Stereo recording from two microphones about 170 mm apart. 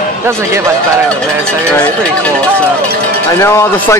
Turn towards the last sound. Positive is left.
turn(degrees=15)  # may be behind; listen again after turning